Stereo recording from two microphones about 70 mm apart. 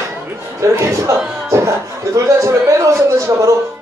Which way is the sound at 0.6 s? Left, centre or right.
Right.